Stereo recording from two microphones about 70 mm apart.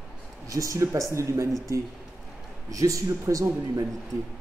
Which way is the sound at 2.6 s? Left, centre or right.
Right.